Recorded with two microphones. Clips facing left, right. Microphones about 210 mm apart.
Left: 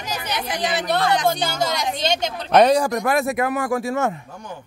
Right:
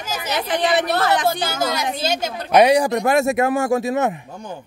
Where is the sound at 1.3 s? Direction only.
5° right (ahead or behind).